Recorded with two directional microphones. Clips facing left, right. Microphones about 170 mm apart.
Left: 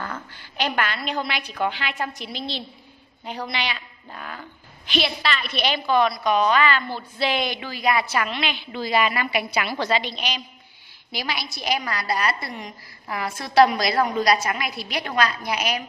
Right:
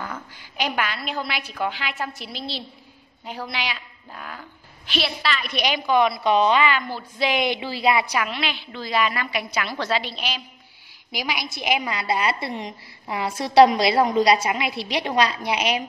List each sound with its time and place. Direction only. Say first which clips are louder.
0.0 s a woman's voice: even; 10° right (ahead or behind)
8.7 s a woman's voice: left 2 dB; 10° left (ahead or behind); by 15.8 s 30° right (ahead or behind)